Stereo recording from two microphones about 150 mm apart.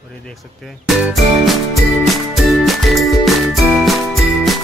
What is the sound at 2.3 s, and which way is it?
Music, centre (ahead or behind).